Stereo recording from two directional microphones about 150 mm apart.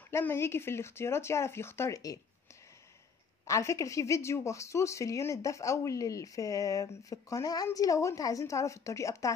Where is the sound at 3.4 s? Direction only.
20° left (ahead or behind).